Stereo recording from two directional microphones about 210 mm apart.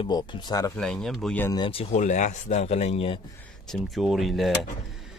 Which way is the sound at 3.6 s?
Centre (ahead or behind).